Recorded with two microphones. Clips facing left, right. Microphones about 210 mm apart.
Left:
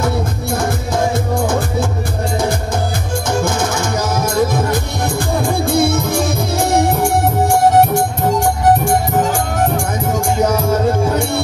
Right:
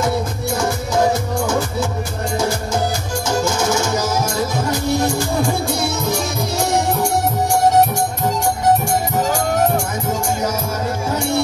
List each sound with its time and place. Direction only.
3.3 s music: 55° left (ahead or behind)